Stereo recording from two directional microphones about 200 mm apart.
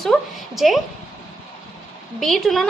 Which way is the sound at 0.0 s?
Centre (ahead or behind).